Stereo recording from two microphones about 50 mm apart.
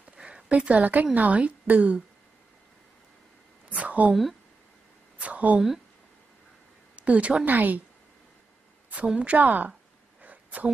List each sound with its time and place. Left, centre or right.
0.0 s a sound: centre
0.5 s a woman's voice: right
3.7 s a sound: right
4.1 s speech: centre
5.2 s speech: right
7.0 s a woman's voice: right
7.4 s a woman's voice: right
9.0 s a woman's voice: right
10.2 s a sound: right